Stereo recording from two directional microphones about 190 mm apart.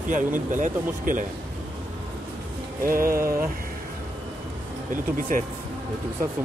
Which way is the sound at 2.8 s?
50° right (ahead or behind).